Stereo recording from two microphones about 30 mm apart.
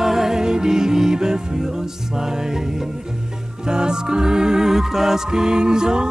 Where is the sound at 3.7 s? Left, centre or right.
Right.